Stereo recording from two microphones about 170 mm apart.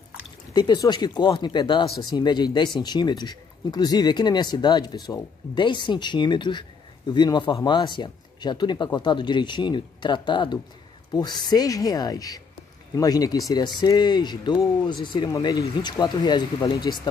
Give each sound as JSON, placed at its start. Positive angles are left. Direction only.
{"t": 0.6, "sound": "speech", "side_deg": 25}